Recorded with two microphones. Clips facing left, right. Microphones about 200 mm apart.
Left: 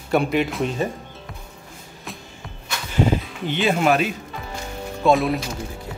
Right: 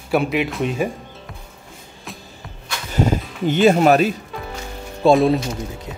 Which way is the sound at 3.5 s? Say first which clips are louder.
Right 6 dB; 45° right (ahead or behind).